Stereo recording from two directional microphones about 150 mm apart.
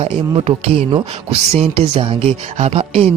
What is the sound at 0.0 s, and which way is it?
Speech, 45° right (ahead or behind).